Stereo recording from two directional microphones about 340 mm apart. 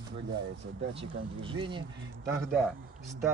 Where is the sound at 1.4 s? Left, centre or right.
Centre.